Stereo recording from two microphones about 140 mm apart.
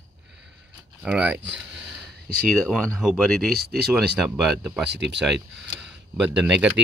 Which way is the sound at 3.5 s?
90° right.